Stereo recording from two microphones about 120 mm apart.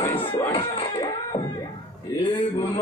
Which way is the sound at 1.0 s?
35° left (ahead or behind).